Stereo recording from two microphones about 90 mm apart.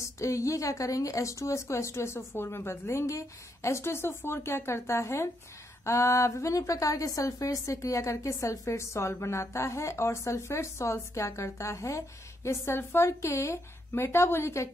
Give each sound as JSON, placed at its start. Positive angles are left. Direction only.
{"t": 0.0, "sound": "a woman's voice", "side_deg": 35}